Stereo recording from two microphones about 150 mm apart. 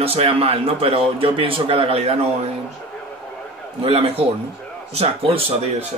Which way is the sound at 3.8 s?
40° right (ahead or behind).